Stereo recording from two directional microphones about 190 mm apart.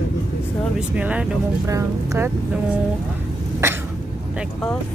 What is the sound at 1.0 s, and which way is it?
Speech, 5° right (ahead or behind).